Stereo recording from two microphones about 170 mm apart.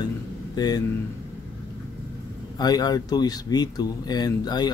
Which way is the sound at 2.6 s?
25° left (ahead or behind).